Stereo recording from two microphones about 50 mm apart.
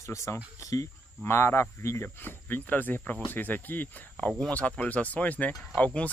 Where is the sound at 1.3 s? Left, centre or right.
Left.